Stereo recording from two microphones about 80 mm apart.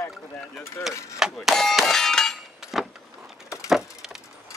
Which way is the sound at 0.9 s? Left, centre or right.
Left.